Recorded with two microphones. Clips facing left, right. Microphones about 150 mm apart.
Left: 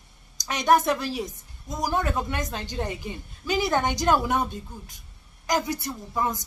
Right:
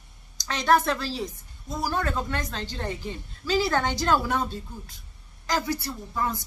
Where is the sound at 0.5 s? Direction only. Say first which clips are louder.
Left 1 dB; 15° left (ahead or behind).